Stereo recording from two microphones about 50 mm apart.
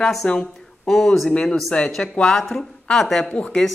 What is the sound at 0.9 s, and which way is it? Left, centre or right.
Speech, centre.